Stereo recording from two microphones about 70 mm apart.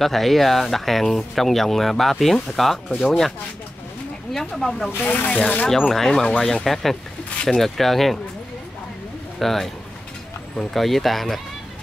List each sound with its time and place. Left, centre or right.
0.0 s speech: centre
5.0 s speech: left
5.7 s speech: centre
9.4 s speech: centre